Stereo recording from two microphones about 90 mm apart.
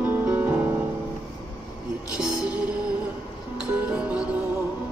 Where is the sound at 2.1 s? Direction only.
5° right (ahead or behind).